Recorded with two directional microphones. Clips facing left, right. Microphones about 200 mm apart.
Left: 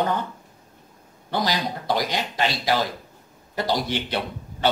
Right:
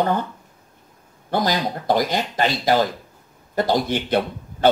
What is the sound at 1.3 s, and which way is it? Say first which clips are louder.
Speech: right 4 dB; 50° right (ahead or behind).